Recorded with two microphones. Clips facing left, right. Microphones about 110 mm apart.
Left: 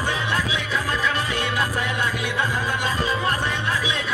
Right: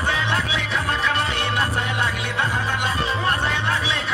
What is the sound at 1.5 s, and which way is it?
Music, 30° right (ahead or behind).